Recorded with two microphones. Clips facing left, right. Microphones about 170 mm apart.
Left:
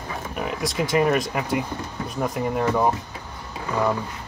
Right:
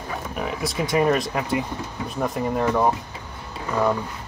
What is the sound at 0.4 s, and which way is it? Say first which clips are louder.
Speech: left 1 dB; centre (ahead or behind).